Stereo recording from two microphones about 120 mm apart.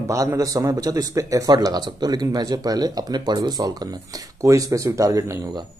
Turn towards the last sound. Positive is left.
turn(degrees=-30)  # may be behind; listen again after turning